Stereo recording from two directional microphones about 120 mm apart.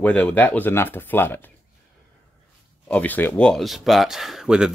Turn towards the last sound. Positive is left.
turn(degrees=-5)  # may be behind; listen again after turning